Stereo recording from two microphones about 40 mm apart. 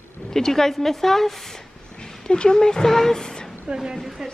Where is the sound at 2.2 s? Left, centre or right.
Left.